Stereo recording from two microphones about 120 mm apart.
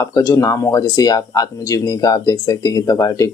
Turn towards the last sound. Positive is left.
turn(degrees=30)  # may be behind; listen again after turning